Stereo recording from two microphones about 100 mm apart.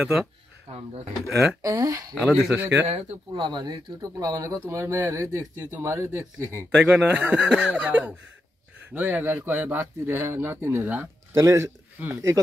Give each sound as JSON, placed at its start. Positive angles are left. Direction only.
{"t": 0.0, "sound": "speech", "side_deg": -5}
{"t": 0.7, "sound": "speech", "side_deg": -90}
{"t": 1.2, "sound": "speech", "side_deg": 0}
{"t": 1.6, "sound": "speech", "side_deg": -35}
{"t": 2.2, "sound": "speech", "side_deg": -5}
{"t": 2.6, "sound": "speech", "side_deg": -15}
{"t": 2.9, "sound": "speech", "side_deg": -90}
{"t": 3.3, "sound": "speech", "side_deg": -50}
{"t": 6.7, "sound": "speech", "side_deg": -5}